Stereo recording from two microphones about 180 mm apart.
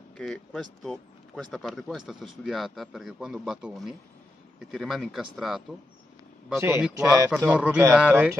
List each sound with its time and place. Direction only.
0.2 s speech: 5° left (ahead or behind)
6.6 s speech: 15° right (ahead or behind)